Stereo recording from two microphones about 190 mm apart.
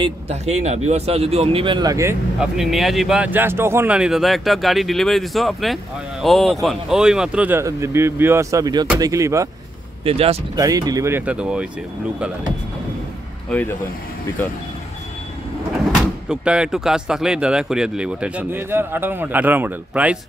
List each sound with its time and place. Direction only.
0.0 s speech: 35° right (ahead or behind); by 2.1 s 15° right (ahead or behind)
2.4 s speech: centre (ahead or behind)
10.0 s speech: 30° right (ahead or behind)
10.5 s speech: 20° right (ahead or behind)
16.3 s speech: 5° right (ahead or behind)